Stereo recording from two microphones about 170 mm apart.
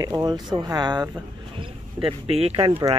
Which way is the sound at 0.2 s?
25° right (ahead or behind).